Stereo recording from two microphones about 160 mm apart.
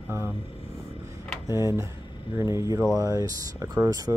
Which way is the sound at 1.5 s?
20° right (ahead or behind).